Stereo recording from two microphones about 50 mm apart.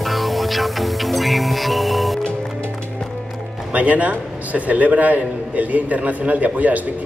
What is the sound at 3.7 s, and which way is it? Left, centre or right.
A man's voice, right.